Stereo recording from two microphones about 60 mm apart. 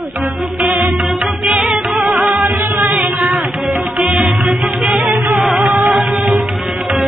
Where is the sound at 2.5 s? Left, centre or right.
Right.